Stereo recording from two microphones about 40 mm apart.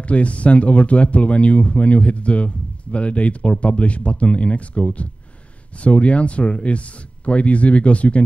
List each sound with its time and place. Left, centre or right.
0.0 s speech: left